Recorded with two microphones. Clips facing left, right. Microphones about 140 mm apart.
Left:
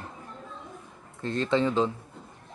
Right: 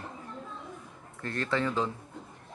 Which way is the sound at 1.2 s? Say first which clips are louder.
Left 5 dB; 20° left (ahead or behind).